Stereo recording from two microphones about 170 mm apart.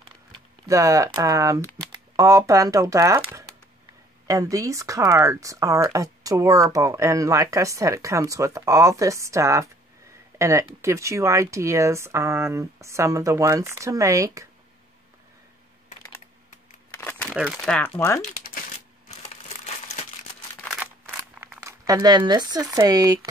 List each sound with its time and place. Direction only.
0.7 s speech: 20° right (ahead or behind)
4.3 s speech: 20° right (ahead or behind)
16.9 s crumpling: 10° left (ahead or behind)
17.3 s speech: 5° right (ahead or behind)
17.7 s speech: 10° left (ahead or behind)
20.8 s a sound: 10° right (ahead or behind)
21.6 s speech: 20° right (ahead or behind)